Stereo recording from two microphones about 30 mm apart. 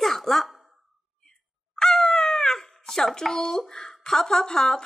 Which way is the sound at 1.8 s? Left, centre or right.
Centre.